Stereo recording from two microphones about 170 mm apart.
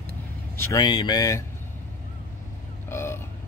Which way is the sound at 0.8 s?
25° left (ahead or behind).